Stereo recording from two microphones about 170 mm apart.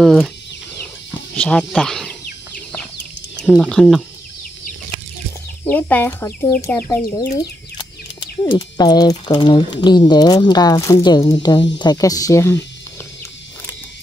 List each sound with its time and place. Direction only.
0.0 s speech: centre (ahead or behind)
1.3 s speech: 5° left (ahead or behind)
3.4 s speech: centre (ahead or behind)
5.7 s speech: 10° left (ahead or behind)
7.2 s speech: 25° left (ahead or behind)